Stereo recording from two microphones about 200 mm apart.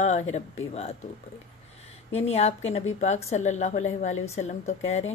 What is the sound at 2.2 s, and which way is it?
A woman's voice, 30° left (ahead or behind).